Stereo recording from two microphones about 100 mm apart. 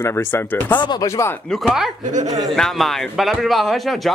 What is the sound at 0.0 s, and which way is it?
Speech, 25° left (ahead or behind).